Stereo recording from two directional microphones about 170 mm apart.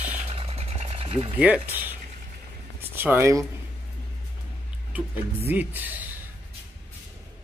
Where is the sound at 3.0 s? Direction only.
15° right (ahead or behind).